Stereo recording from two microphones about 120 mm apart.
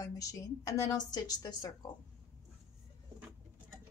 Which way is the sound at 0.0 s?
30° left (ahead or behind).